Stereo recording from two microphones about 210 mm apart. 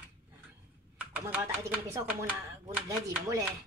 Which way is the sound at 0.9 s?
10° right (ahead or behind).